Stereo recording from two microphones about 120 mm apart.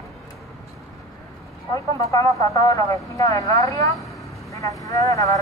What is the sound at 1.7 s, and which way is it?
Vehicle, 25° left (ahead or behind).